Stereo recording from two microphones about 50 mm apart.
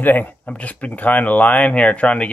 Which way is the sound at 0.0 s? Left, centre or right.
Left.